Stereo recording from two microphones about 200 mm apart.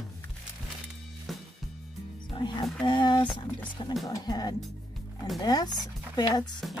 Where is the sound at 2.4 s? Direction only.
25° left (ahead or behind).